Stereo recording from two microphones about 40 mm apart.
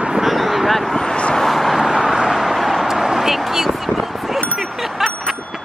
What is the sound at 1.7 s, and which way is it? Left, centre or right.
Vehicle, centre.